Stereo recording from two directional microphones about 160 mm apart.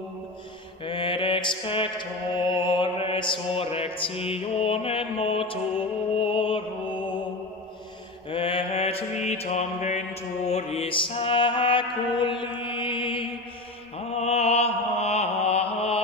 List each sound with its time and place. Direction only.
0.8 s mantra: 30° left (ahead or behind)
8.3 s mantra: 35° left (ahead or behind)